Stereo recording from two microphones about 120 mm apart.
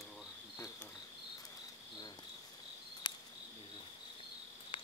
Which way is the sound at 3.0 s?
40° left (ahead or behind).